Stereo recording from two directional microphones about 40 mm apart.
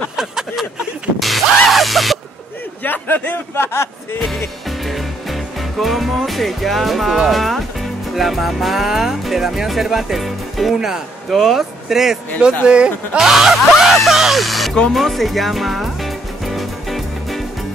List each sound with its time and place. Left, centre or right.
0.1 s a sound: centre
1.2 s music: centre
2.8 s a sound: left
3.5 s speech: left
4.2 s music: centre
7.2 s speech: centre
11.2 s music: centre
12.6 s speech: right
13.2 s music: centre
14.4 s a sound: centre
14.9 s music: centre